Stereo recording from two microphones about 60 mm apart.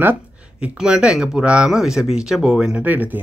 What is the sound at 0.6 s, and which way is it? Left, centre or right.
Speech, centre.